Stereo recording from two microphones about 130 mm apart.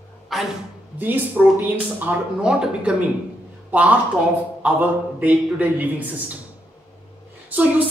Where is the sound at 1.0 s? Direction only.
15° right (ahead or behind).